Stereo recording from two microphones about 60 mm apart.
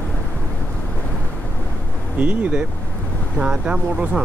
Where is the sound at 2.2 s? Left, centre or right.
Right.